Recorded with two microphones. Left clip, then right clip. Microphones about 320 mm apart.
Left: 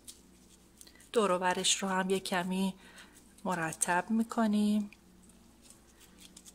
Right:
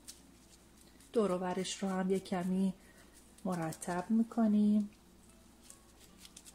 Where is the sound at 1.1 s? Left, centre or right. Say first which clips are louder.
Left 5 dB; left.